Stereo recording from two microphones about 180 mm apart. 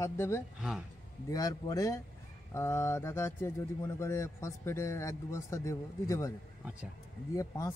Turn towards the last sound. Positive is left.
turn(degrees=20)  # may be behind; listen again after turning